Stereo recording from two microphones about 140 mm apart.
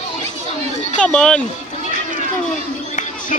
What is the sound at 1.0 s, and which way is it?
Speech, 5° left (ahead or behind).